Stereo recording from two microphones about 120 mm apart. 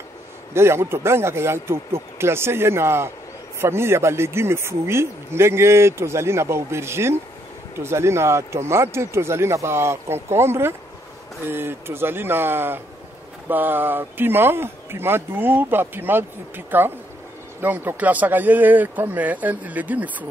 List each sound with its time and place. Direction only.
0.6 s speech: 20° right (ahead or behind)